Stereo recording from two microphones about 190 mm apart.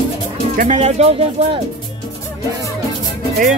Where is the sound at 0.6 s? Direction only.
35° right (ahead or behind).